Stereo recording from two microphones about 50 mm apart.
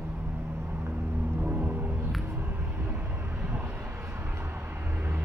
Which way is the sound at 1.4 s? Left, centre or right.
Right.